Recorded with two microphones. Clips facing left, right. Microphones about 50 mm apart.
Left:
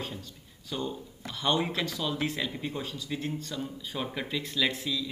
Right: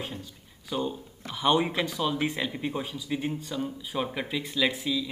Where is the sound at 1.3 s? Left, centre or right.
Centre.